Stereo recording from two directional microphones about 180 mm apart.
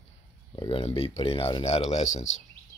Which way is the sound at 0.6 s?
30° left (ahead or behind).